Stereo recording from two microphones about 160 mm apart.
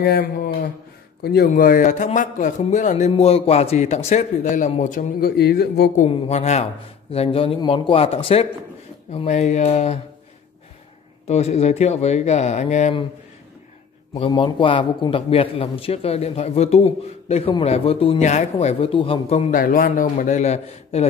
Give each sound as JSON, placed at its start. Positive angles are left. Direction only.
{"t": 0.0, "sound": "speech", "side_deg": 85}
{"t": 1.2, "sound": "speech", "side_deg": 75}
{"t": 1.5, "sound": "a man's voice", "side_deg": 55}
{"t": 5.4, "sound": "speech", "side_deg": 85}
{"t": 6.0, "sound": "a man's voice", "side_deg": 40}
{"t": 11.2, "sound": "a man's voice", "side_deg": 40}
{"t": 14.2, "sound": "a man's voice", "side_deg": 30}
{"t": 19.5, "sound": "a man's voice", "side_deg": 60}